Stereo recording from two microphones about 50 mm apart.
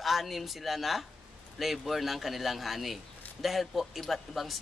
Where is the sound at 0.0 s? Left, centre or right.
Centre.